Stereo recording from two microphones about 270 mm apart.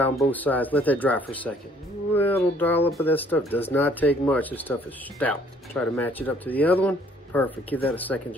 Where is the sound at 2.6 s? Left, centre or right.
Centre.